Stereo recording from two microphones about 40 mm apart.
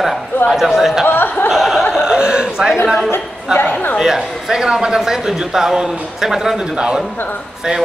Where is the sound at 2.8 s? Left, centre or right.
Centre.